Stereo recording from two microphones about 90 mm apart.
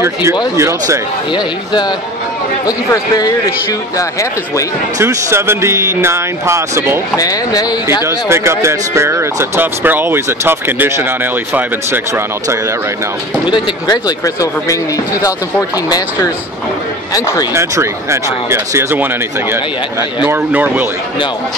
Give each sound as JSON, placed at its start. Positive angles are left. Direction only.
{"t": 0.0, "sound": "speech", "side_deg": -30}
{"t": 1.3, "sound": "speech", "side_deg": 55}
{"t": 4.9, "sound": "speech", "side_deg": -30}
{"t": 7.2, "sound": "speech", "side_deg": 45}
{"t": 8.3, "sound": "speech", "side_deg": -30}
{"t": 13.5, "sound": "speech", "side_deg": 45}
{"t": 17.1, "sound": "speech", "side_deg": 45}
{"t": 17.6, "sound": "speech", "side_deg": -30}
{"t": 20.2, "sound": "speech", "side_deg": -20}